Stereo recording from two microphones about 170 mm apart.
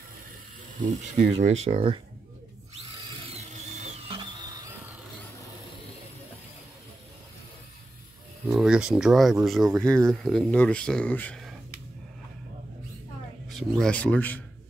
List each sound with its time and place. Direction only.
0.7 s speech: 50° right (ahead or behind)
3.3 s a sound: 40° right (ahead or behind); by 4.6 s 25° right (ahead or behind)
8.5 s speech: 5° right (ahead or behind)
13.5 s speech: centre (ahead or behind)